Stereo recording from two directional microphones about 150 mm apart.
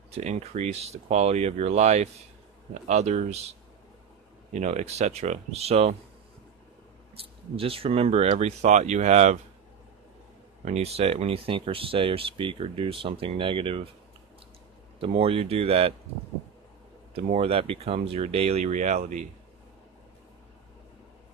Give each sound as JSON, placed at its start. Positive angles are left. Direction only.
{"t": 0.1, "sound": "speech", "side_deg": -45}
{"t": 4.6, "sound": "speech", "side_deg": -50}
{"t": 7.5, "sound": "speech", "side_deg": -40}
{"t": 10.6, "sound": "speech", "side_deg": -45}
{"t": 15.0, "sound": "speech", "side_deg": -40}
{"t": 17.1, "sound": "speech", "side_deg": -45}